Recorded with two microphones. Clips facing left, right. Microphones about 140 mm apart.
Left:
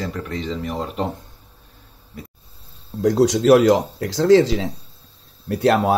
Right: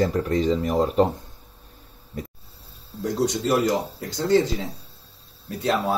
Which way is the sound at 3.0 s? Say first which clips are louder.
Left 9 dB; 90° left.